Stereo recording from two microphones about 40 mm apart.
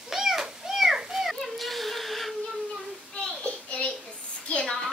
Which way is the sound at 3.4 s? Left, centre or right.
Left.